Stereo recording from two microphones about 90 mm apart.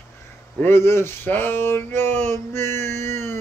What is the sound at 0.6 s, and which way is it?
Speech, 25° left (ahead or behind).